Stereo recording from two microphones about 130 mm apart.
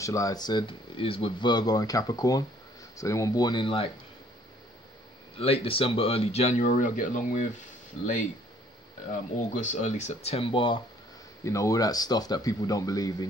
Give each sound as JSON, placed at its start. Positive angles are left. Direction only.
{"t": 0.0, "sound": "speech", "side_deg": 25}
{"t": 5.4, "sound": "speech", "side_deg": 45}
{"t": 9.5, "sound": "speech", "side_deg": 75}
{"t": 11.4, "sound": "speech", "side_deg": 25}